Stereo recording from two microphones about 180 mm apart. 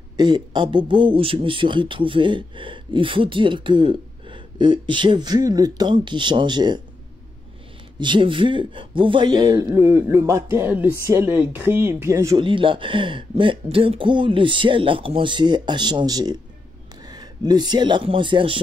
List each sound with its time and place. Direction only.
0.2 s speech: 25° right (ahead or behind)
8.0 s a man's voice: 25° right (ahead or behind)
12.4 s speech: 30° right (ahead or behind)